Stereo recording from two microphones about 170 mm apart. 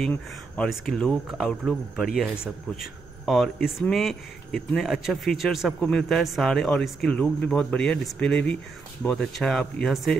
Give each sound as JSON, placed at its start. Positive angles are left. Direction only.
{"t": 0.0, "sound": "speech", "side_deg": 5}